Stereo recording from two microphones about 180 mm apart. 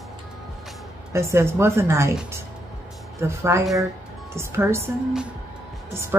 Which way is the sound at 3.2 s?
15° right (ahead or behind).